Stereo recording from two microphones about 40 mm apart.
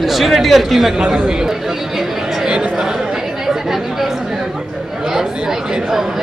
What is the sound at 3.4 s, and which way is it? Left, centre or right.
Chatter, centre.